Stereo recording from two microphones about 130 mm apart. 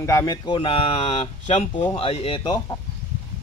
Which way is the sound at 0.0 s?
25° left (ahead or behind).